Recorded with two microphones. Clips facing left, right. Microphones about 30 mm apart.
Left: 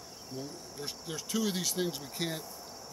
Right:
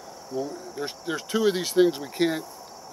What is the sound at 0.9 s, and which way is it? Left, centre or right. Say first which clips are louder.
Speech: right 7 dB; right.